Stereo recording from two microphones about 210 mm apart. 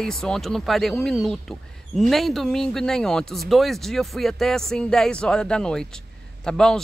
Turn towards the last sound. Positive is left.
turn(degrees=5)  # may be behind; listen again after turning